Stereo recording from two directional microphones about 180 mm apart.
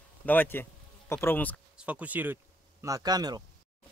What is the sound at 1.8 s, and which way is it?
Speech, 10° right (ahead or behind).